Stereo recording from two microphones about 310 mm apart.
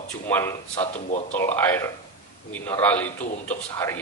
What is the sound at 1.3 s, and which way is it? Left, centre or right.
A man's voice, centre.